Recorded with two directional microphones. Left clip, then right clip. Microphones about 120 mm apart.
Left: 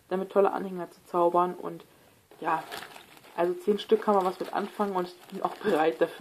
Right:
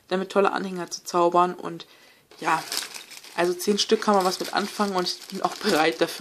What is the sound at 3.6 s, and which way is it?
Speech, 15° right (ahead or behind).